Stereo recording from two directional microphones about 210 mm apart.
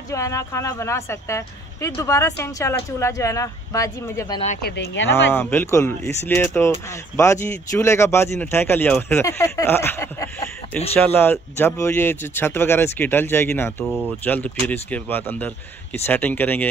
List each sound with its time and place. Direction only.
0.1 s a man's voice: 15° left (ahead or behind)
4.6 s speech: 55° left (ahead or behind)
5.1 s a man's voice: 10° left (ahead or behind)
13.8 s speech: 10° right (ahead or behind)
14.2 s a man's voice: 10° left (ahead or behind)